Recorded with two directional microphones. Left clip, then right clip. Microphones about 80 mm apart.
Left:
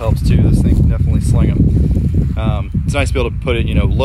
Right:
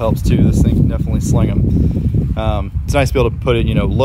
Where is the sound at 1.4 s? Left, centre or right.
Right.